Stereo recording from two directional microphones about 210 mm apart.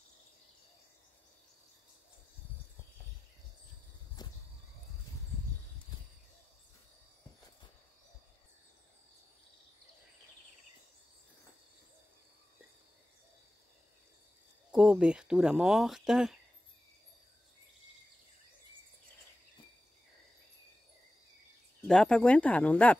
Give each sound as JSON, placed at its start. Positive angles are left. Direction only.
{"t": 4.2, "sound": "a sound", "side_deg": 20}
{"t": 14.7, "sound": "speech", "side_deg": -5}
{"t": 21.8, "sound": "speech", "side_deg": 5}